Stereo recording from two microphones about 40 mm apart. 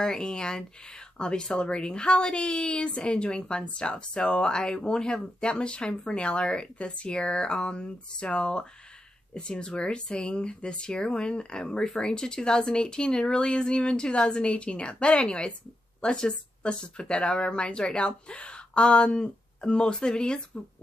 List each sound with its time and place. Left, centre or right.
0.0 s speech: centre